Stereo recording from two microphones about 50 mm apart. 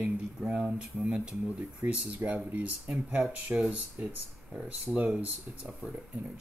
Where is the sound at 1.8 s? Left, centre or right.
Right.